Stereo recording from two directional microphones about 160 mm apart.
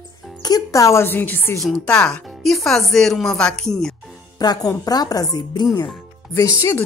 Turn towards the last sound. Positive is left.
turn(degrees=15)  # may be behind; listen again after turning